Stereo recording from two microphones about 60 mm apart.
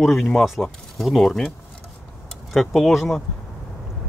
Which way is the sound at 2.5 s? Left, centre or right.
Centre.